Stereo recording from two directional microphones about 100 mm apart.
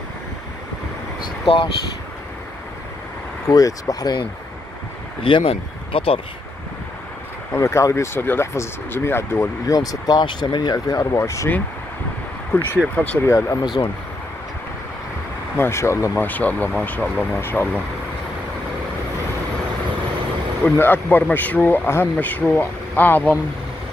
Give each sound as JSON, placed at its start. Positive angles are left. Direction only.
{"t": 3.4, "sound": "speech", "side_deg": 35}
{"t": 5.2, "sound": "speech", "side_deg": 65}
{"t": 7.5, "sound": "speech", "side_deg": 30}
{"t": 9.7, "sound": "speech", "side_deg": 40}
{"t": 12.5, "sound": "speech", "side_deg": 20}
{"t": 13.3, "sound": "speech", "side_deg": 30}
{"t": 15.5, "sound": "speech", "side_deg": 25}
{"t": 16.3, "sound": "speech", "side_deg": 15}
{"t": 20.6, "sound": "speech", "side_deg": 20}